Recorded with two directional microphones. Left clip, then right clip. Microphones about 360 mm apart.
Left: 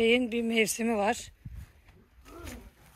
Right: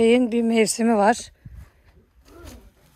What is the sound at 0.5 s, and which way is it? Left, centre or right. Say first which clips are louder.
Speech: right 5 dB; centre.